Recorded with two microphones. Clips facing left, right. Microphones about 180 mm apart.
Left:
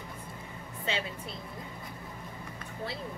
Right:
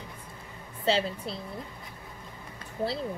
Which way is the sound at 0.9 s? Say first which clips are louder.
Right 8 dB; 35° right (ahead or behind).